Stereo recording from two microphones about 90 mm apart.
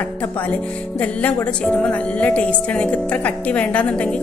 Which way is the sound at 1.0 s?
15° left (ahead or behind).